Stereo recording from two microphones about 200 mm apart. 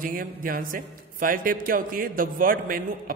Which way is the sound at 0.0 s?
45° right (ahead or behind).